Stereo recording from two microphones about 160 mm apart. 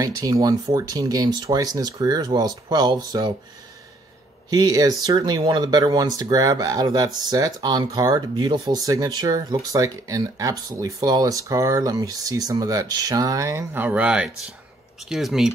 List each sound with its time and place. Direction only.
0.0 s speech: 20° right (ahead or behind)
4.5 s speech: 25° right (ahead or behind); by 15.5 s centre (ahead or behind)